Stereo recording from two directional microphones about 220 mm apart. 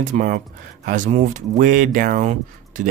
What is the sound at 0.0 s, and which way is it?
Speech, 35° right (ahead or behind).